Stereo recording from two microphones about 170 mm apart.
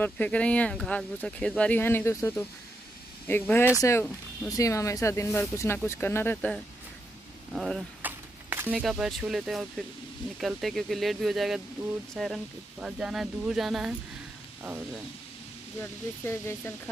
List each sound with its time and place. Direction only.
0.0 s speech: 10° left (ahead or behind)
15.8 s speech: 15° left (ahead or behind)